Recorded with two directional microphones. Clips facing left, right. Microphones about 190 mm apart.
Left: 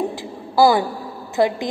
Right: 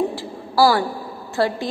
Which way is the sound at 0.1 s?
20° left (ahead or behind).